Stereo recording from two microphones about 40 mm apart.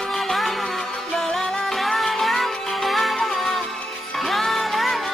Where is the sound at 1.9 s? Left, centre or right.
Centre.